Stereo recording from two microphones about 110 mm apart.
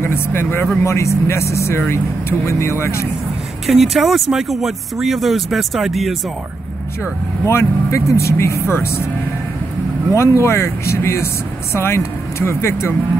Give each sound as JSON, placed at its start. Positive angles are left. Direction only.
{"t": 0.0, "sound": "speech", "side_deg": 20}
{"t": 3.6, "sound": "speech", "side_deg": 0}
{"t": 7.4, "sound": "speech", "side_deg": 25}
{"t": 10.1, "sound": "speech", "side_deg": 25}